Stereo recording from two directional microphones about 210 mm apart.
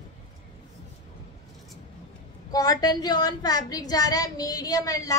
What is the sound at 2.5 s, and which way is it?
A woman's voice, 15° left (ahead or behind).